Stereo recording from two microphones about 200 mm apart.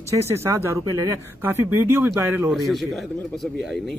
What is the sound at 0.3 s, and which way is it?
A man's voice, 10° right (ahead or behind).